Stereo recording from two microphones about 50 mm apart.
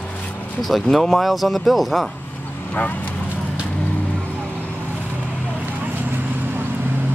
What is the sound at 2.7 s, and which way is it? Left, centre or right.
Speech, left.